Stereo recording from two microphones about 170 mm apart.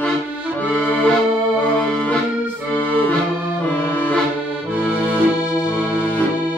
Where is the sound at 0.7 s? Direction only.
10° left (ahead or behind).